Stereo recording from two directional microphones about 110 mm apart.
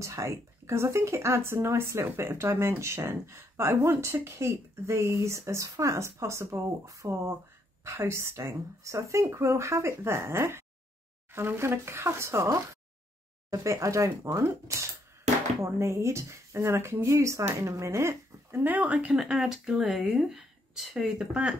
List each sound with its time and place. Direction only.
0.0 s speech: 30° right (ahead or behind); by 21.5 s 5° right (ahead or behind)